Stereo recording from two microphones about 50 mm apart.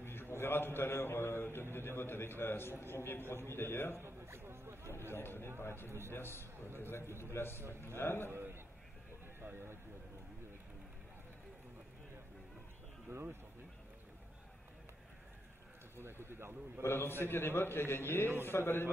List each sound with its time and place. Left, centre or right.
0.0 s a man's voice: left
3.9 s a sound: right
5.1 s a man's voice: left
5.9 s a man's voice: right
6.1 s a man's voice: left
7.1 s a man's voice: right
7.3 s a man's voice: left
8.3 s a man's voice: right
13.1 s a man's voice: right
16.0 s a man's voice: right
16.8 s a man's voice: left